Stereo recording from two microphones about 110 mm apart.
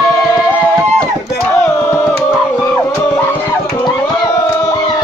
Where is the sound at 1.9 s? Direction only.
15° left (ahead or behind).